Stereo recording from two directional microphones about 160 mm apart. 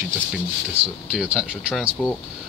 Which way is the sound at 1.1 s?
5° right (ahead or behind).